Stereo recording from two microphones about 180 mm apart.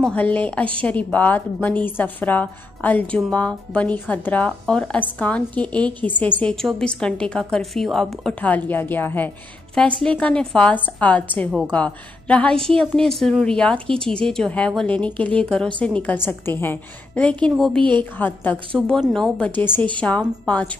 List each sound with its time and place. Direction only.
0.0 s a woman's voice: 10° left (ahead or behind)